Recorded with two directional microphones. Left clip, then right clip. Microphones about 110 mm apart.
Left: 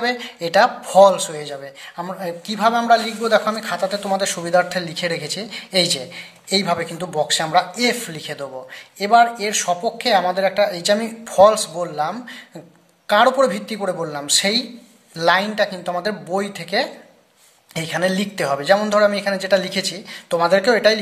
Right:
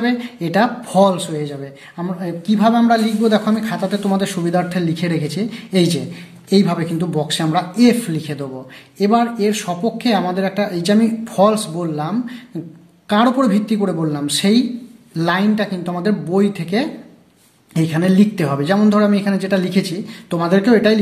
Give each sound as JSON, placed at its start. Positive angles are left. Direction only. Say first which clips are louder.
{"t": 0.0, "sound": "speech", "louder": "right 1 dB", "side_deg": 25}